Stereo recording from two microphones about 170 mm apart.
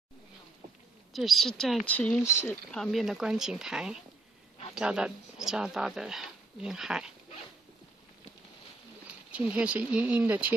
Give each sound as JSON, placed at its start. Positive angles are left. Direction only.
{"t": 1.1, "sound": "speech", "side_deg": 0}
{"t": 2.7, "sound": "speech", "side_deg": 0}
{"t": 9.0, "sound": "speech", "side_deg": -5}